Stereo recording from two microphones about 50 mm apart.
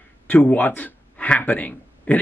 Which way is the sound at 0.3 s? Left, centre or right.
Left.